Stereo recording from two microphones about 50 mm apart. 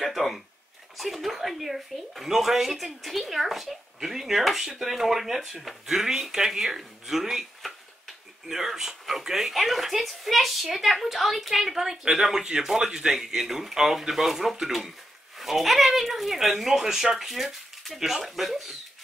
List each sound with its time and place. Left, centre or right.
0.0 s speech: centre